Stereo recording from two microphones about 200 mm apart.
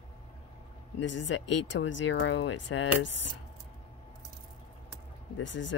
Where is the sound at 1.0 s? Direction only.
65° left (ahead or behind).